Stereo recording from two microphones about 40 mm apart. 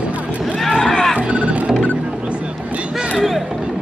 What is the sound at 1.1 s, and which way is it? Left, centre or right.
Music, right.